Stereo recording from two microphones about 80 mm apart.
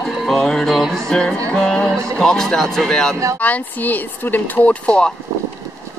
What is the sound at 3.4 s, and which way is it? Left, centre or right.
Speech, left.